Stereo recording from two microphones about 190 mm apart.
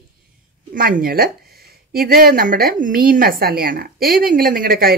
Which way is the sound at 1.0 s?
50° right (ahead or behind).